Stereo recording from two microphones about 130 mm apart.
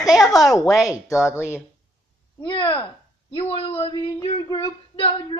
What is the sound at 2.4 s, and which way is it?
Speech, 40° left (ahead or behind).